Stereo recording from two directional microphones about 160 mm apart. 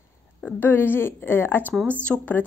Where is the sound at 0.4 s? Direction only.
10° left (ahead or behind).